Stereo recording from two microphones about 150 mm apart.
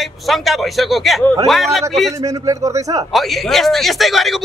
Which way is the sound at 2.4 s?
20° right (ahead or behind).